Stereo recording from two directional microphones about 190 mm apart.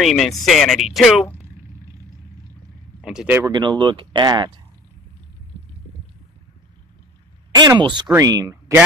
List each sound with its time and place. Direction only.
0.0 s speech: centre (ahead or behind)
3.0 s speech: 5° right (ahead or behind)
3.4 s speech: 25° right (ahead or behind)
7.5 s speech: 25° right (ahead or behind)